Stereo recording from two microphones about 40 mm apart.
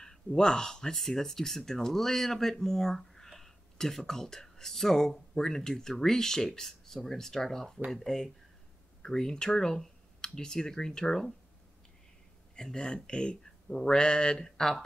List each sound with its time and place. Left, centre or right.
0.0 s speech: centre
12.5 s speech: centre